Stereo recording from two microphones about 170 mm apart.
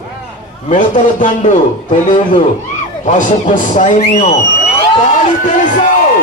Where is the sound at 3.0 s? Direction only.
45° left (ahead or behind).